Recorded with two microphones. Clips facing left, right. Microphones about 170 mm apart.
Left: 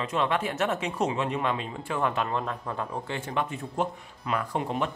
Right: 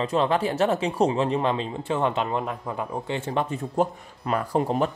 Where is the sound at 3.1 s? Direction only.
30° right (ahead or behind).